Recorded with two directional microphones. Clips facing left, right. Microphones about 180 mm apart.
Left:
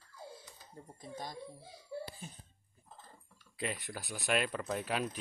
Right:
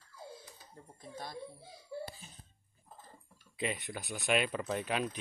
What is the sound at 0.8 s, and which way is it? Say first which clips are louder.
Speech: left 4 dB; 15° left (ahead or behind).